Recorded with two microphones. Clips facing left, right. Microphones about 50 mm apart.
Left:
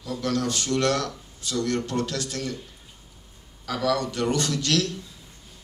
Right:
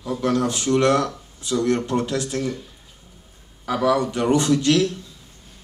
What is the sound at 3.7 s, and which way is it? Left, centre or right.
Speech, right.